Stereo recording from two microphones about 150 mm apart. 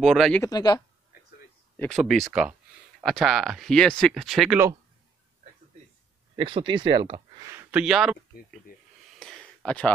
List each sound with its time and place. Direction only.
0.0 s speech: centre (ahead or behind)
0.4 s speech: 25° left (ahead or behind)
1.8 s speech: centre (ahead or behind)
6.3 s speech: 35° right (ahead or behind)
7.4 s a sound: 15° right (ahead or behind)
7.8 s speech: 5° right (ahead or behind)
9.2 s a sound: centre (ahead or behind)